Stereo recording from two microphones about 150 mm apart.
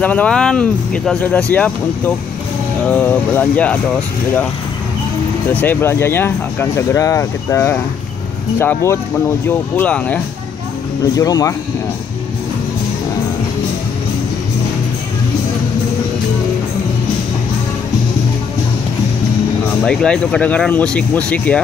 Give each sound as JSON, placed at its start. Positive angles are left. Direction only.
{"t": 0.0, "sound": "speech", "side_deg": 10}
{"t": 5.5, "sound": "speech", "side_deg": 10}
{"t": 11.1, "sound": "speech", "side_deg": 25}
{"t": 19.8, "sound": "speech", "side_deg": 5}